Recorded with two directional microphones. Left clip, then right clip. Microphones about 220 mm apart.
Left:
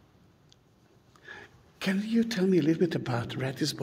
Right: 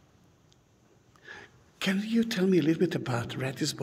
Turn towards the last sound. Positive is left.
turn(degrees=0)  # may be behind; listen again after turning